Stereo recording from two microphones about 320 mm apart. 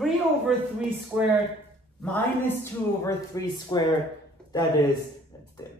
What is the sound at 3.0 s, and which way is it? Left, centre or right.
Speech, centre.